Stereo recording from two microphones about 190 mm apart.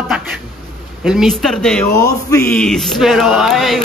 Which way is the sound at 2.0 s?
20° left (ahead or behind).